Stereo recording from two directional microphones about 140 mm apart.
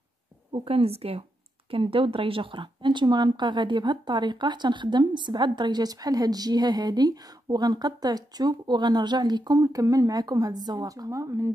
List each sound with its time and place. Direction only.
0.5 s a woman's voice: 45° right (ahead or behind); by 11.5 s 20° right (ahead or behind)